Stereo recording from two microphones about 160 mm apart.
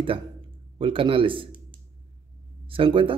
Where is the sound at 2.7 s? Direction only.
35° right (ahead or behind).